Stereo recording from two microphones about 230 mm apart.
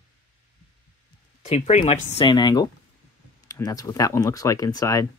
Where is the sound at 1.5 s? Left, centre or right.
Left.